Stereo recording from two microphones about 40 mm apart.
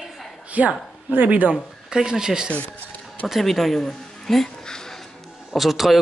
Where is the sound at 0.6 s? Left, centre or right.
Right.